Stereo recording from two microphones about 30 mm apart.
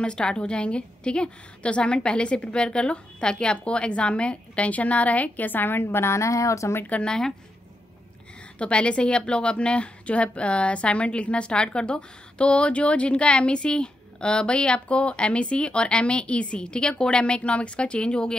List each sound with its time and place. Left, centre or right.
0.0 s a woman's voice: left
5.4 s a woman's voice: left
7.1 s speech: centre
8.5 s a woman's voice: left
17.4 s a woman's voice: left